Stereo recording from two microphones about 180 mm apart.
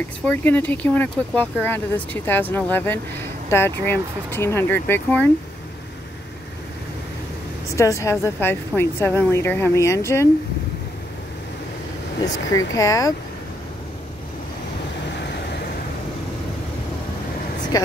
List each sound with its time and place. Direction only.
0.2 s speech: 10° left (ahead or behind)
7.7 s speech: 15° left (ahead or behind)
12.5 s speech: 20° left (ahead or behind)
15.2 s vehicle: 70° left (ahead or behind)
17.7 s speech: 20° left (ahead or behind)